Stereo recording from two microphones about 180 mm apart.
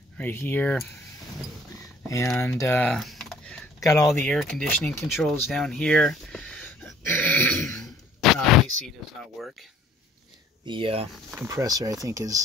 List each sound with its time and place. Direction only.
0.2 s speech: 10° left (ahead or behind)
2.0 s speech: 15° left (ahead or behind)
3.8 s speech: 20° left (ahead or behind)
4.1 s speech: 5° left (ahead or behind)
7.0 s throat clearing: 10° left (ahead or behind)
8.2 s speech: centre (ahead or behind)
10.6 s speech: 30° right (ahead or behind)
11.4 s speech: 20° right (ahead or behind)